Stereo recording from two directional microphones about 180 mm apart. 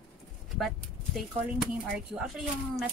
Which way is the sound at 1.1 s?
Centre (ahead or behind).